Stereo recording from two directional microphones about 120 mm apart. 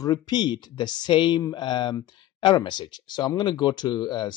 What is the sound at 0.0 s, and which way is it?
Speech, 35° left (ahead or behind).